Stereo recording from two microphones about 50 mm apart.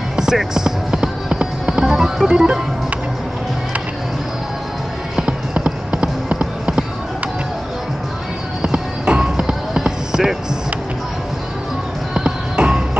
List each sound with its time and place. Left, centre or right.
0.1 s music: centre
5.5 s a sound: right
8.6 s basketball bounce: right
12.1 s music: centre